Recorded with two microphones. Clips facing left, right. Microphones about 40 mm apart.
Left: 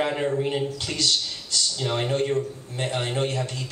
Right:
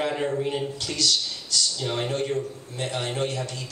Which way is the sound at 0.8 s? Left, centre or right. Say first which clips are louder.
Even; left.